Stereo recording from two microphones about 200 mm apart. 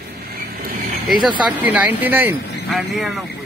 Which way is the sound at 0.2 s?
50° right (ahead or behind).